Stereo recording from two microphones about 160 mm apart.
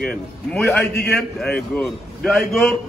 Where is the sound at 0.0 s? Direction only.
5° left (ahead or behind).